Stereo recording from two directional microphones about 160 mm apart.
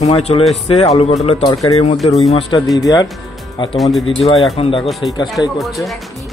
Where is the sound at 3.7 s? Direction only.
Centre (ahead or behind).